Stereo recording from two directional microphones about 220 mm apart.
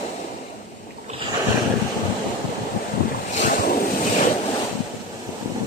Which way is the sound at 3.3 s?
40° left (ahead or behind).